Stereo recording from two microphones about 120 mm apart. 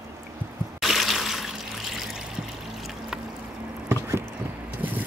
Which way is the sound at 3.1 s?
5° right (ahead or behind).